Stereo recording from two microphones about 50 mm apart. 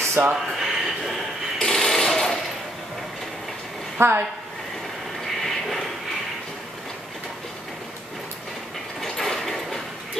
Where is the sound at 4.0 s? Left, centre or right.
Right.